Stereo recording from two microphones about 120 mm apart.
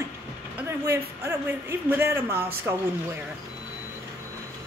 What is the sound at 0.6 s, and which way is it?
Speech, 20° right (ahead or behind).